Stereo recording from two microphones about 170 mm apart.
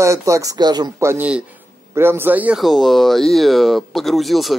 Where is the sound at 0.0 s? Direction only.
20° right (ahead or behind).